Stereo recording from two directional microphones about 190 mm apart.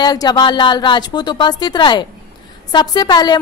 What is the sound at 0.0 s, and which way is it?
A woman's voice, 20° left (ahead or behind).